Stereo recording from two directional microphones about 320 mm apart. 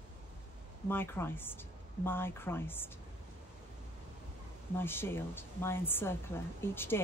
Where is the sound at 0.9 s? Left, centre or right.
Centre.